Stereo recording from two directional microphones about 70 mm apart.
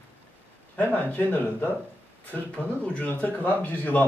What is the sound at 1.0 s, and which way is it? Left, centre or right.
Speech, left.